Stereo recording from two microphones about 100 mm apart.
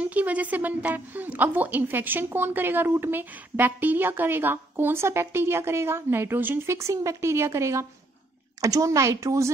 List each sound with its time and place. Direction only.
0.0 s a woman's voice: 15° right (ahead or behind); by 9.5 s 30° right (ahead or behind)